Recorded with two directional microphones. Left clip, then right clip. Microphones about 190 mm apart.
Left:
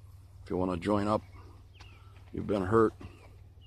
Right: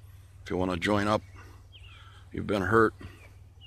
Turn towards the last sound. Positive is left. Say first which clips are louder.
# right 3 dB
turn(degrees=-5)  # may be behind; listen again after turning